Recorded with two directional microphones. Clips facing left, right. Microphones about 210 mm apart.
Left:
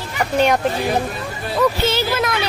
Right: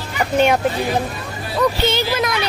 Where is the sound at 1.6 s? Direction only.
5° left (ahead or behind).